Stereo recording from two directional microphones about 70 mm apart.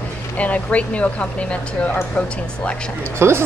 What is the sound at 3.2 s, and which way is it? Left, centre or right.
Speech, right.